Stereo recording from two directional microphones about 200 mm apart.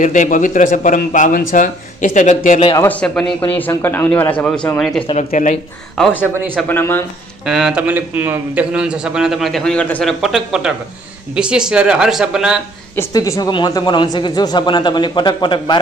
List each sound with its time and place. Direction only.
0.0 s a man's voice: 40° left (ahead or behind)
2.7 s speech: 10° left (ahead or behind)
5.3 s a man's voice: 40° left (ahead or behind)
5.9 s a man's voice: 5° left (ahead or behind)
7.4 s a man's voice: 5° right (ahead or behind)
12.9 s speech: 15° left (ahead or behind)